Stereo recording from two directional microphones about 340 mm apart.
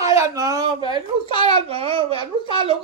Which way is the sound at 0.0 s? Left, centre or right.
Centre.